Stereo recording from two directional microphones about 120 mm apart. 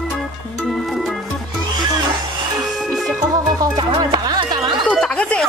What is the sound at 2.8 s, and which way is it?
Music, centre (ahead or behind).